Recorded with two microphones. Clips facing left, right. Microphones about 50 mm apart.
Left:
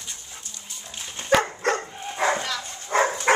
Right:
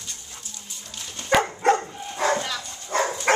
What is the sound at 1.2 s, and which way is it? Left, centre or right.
Dog, left.